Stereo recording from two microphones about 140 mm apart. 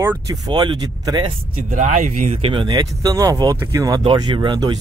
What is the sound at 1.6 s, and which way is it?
Speech, 65° right (ahead or behind).